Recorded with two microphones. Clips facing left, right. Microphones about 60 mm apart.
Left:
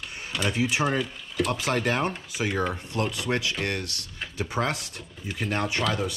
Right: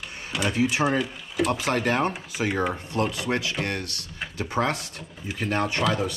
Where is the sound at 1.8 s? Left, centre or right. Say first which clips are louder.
Right 2 dB; right.